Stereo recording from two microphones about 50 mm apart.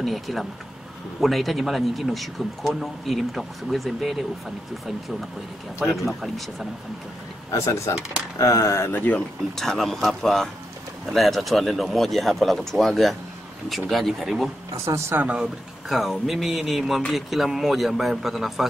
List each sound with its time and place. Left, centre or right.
0.0 s a man's voice: centre
5.9 s a man's voice: centre
7.5 s speech: left
9.6 s a man's voice: centre
14.7 s speech: right
15.9 s a man's voice: centre